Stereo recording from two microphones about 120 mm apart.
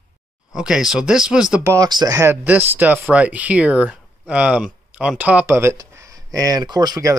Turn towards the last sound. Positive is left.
turn(degrees=-35)  # may be behind; listen again after turning